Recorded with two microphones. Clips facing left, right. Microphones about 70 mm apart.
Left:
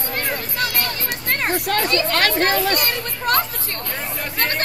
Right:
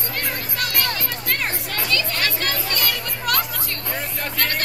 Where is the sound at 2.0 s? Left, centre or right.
Left.